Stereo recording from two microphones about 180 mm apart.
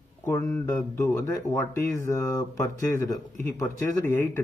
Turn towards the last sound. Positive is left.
turn(degrees=15)  # may be behind; listen again after turning